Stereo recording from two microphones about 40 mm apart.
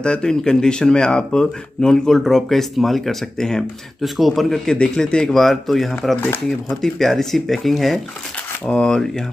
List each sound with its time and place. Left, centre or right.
0.0 s speech: centre
4.6 s speech: centre
5.3 s speech: centre
8.7 s speech: centre